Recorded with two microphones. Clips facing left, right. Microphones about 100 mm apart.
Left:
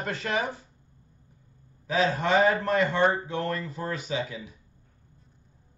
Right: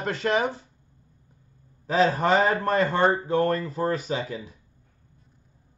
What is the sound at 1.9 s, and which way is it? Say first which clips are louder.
Speech: right 4 dB; 45° right (ahead or behind).